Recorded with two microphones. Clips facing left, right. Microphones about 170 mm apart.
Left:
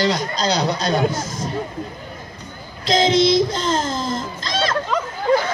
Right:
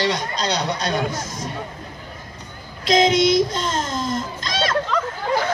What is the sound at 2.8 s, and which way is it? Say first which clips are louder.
Child singing: even; 30° left (ahead or behind).